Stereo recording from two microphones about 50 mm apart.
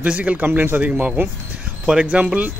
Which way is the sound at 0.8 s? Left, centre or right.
Right.